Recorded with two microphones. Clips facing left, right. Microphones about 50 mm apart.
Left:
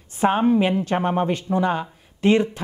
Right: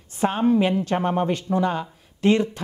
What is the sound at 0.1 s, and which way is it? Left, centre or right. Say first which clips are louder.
A woman's voice: left 2 dB; centre.